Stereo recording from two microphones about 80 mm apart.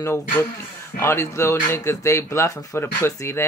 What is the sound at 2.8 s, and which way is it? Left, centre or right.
Speech, left.